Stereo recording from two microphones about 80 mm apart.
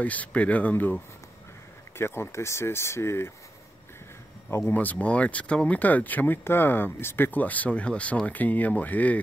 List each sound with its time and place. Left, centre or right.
0.0 s speech: centre
2.0 s speech: left
4.5 s speech: left
4.7 s speech: centre